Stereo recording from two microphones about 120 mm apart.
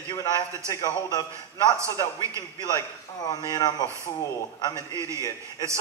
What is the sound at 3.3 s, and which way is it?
Speech, 30° left (ahead or behind).